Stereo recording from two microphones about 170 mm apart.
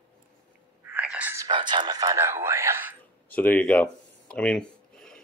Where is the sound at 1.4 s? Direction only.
25° right (ahead or behind).